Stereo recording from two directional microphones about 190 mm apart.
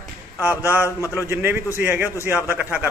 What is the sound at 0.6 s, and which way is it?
Speech, 10° right (ahead or behind).